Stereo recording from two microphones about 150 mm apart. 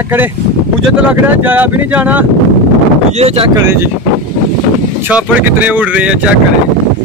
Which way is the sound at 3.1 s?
40° right (ahead or behind).